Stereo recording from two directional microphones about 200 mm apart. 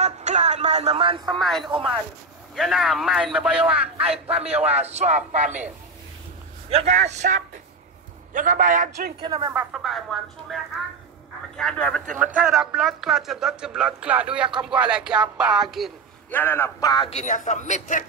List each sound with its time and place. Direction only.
0.0 s a sound: 35° right (ahead or behind)
1.4 s speech: centre (ahead or behind)
4.5 s a man's voice: 30° right (ahead or behind)
6.7 s a man's voice: 35° right (ahead or behind)
9.2 s a woman's voice: 20° right (ahead or behind)
9.5 s speech: 5° right (ahead or behind)
16.3 s a man's voice: 10° left (ahead or behind); by 18.0 s 40° left (ahead or behind)